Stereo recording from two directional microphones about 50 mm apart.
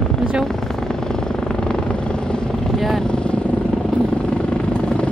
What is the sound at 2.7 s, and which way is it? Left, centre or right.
Vehicle, centre.